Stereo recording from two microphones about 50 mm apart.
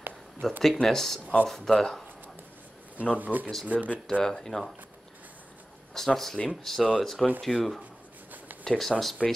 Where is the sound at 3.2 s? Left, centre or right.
Right.